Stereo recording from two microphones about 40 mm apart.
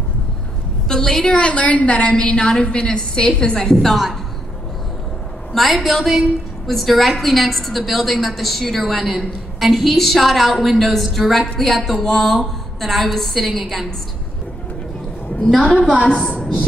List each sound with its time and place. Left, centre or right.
0.8 s a woman's voice: centre; by 2.0 s left
2.0 s a woman's voice: left
5.5 s a woman's voice: centre
15.4 s a woman's voice: centre
16.1 s a woman's voice: left